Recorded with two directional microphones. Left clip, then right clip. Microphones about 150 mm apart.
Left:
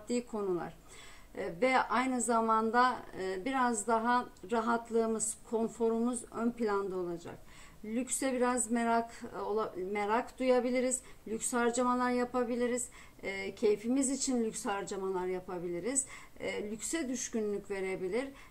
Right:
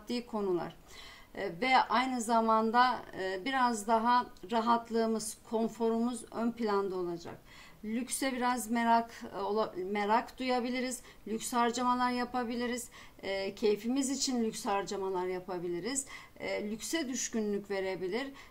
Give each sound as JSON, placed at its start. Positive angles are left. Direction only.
{"t": 0.1, "sound": "speech", "side_deg": -35}